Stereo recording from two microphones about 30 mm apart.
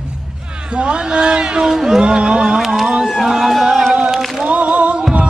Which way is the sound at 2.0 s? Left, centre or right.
Right.